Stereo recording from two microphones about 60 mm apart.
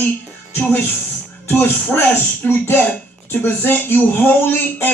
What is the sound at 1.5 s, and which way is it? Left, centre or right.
Speech, left.